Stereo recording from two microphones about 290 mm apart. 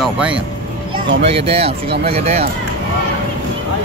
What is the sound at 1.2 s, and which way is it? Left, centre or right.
Speech, centre.